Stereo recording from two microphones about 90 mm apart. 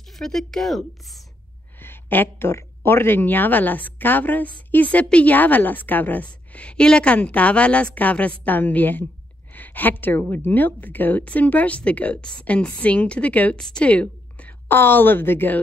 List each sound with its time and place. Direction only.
0.1 s speech: 5° left (ahead or behind)
1.8 s a woman's voice: 25° left (ahead or behind)